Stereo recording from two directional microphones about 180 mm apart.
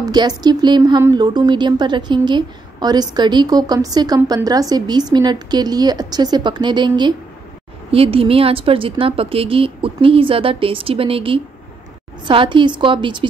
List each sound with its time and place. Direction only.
0.0 s speech: 20° right (ahead or behind)